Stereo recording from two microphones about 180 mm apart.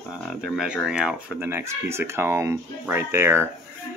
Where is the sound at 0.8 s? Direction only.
5° right (ahead or behind).